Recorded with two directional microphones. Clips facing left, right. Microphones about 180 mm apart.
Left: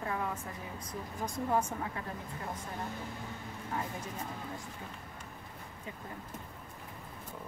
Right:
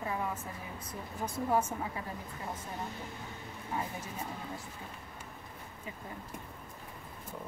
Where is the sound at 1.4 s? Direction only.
5° right (ahead or behind).